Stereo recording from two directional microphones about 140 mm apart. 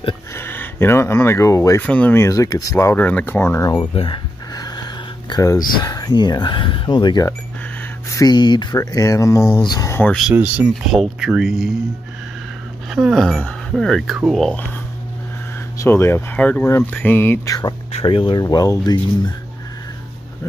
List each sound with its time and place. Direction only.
0.4 s speech: 15° left (ahead or behind)
1.8 s speech: 10° left (ahead or behind)
3.7 s speech: 35° left (ahead or behind)
4.6 s a sound: 30° left (ahead or behind)
5.3 s speech: 20° left (ahead or behind)
10.7 s speech: centre (ahead or behind)
12.9 s speech: centre (ahead or behind)
15.8 s speech: 15° left (ahead or behind)
17.9 s speech: 40° left (ahead or behind)
18.4 s speech: 25° left (ahead or behind)